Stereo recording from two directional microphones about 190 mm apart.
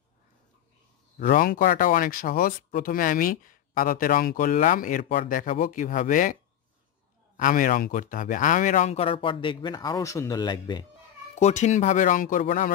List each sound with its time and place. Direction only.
1.1 s speech: 50° left (ahead or behind)
7.3 s speech: 45° left (ahead or behind); by 10.9 s 20° left (ahead or behind)
11.3 s speech: 35° left (ahead or behind)